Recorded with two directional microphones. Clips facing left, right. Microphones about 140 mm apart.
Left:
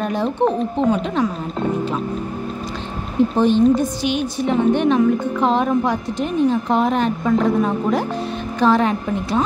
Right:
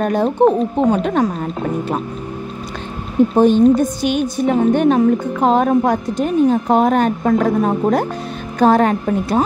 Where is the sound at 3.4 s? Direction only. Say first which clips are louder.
Right 4 dB; 45° right (ahead or behind).